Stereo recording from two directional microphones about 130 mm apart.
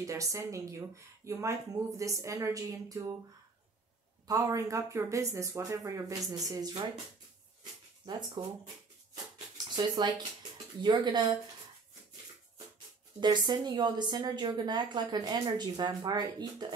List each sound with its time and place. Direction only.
0.0 s speech: 25° right (ahead or behind)
4.3 s a woman's voice: 25° right (ahead or behind)
8.0 s a woman's voice: 35° right (ahead or behind)
9.8 s a woman's voice: 35° right (ahead or behind)
13.2 s a woman's voice: 35° right (ahead or behind)